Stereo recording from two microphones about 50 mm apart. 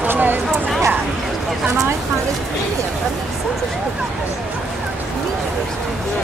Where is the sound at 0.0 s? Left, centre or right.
Right.